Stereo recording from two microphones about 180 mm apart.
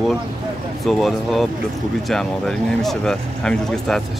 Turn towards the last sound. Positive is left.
turn(degrees=5)  # may be behind; listen again after turning